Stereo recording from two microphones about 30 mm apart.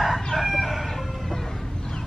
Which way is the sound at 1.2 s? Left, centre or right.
Centre.